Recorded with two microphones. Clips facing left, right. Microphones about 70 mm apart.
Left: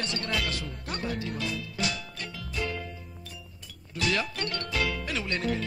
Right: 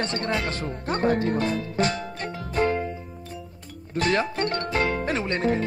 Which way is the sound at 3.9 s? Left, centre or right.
Right.